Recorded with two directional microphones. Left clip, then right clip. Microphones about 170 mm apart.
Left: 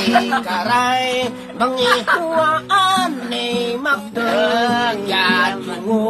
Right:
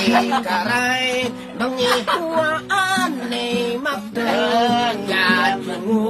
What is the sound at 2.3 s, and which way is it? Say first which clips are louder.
Music: left 4 dB; 20° right (ahead or behind).